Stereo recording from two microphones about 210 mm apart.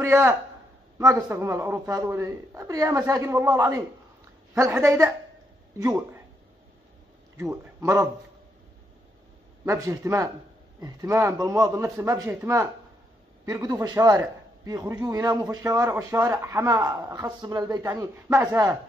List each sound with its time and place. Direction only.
0.0 s a man's voice: 10° right (ahead or behind)
7.3 s a man's voice: 15° right (ahead or behind)
9.7 s a man's voice: 15° right (ahead or behind)